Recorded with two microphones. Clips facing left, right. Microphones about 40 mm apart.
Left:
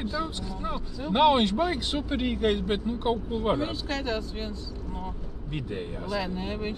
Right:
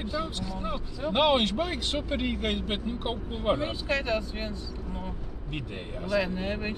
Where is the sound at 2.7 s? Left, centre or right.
Centre.